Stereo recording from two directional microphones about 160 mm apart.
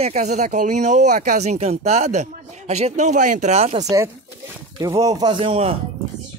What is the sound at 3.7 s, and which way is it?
A man's voice, 20° right (ahead or behind).